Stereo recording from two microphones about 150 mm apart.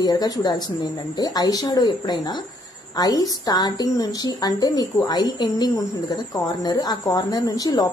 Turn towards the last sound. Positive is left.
turn(degrees=25)  # may be behind; listen again after turning